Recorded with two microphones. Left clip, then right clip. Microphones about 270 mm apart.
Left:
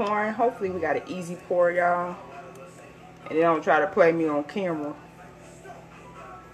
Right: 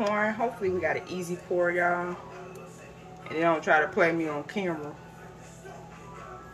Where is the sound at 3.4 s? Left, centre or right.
Left.